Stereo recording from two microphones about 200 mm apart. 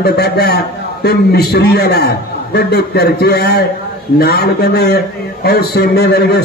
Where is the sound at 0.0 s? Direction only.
50° left (ahead or behind).